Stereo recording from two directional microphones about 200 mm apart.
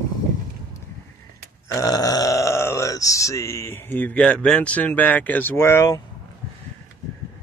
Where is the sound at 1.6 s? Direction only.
15° left (ahead or behind).